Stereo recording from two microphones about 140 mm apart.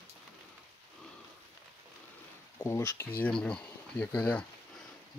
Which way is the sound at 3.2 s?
5° left (ahead or behind).